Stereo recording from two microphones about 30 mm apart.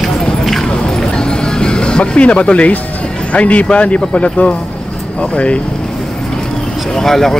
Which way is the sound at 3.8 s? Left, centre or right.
Left.